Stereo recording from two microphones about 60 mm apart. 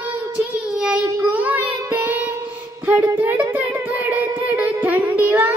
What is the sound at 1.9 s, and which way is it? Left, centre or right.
Music, right.